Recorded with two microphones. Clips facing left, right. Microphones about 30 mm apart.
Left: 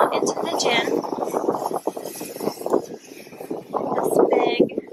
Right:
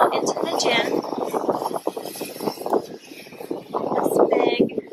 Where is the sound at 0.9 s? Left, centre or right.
Right.